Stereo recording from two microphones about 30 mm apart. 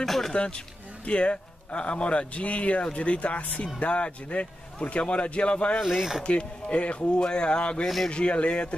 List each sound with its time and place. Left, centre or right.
0.0 s a sound: centre
1.0 s a man's voice: left
5.8 s speech: centre
6.2 s a man's voice: left
7.2 s speech: left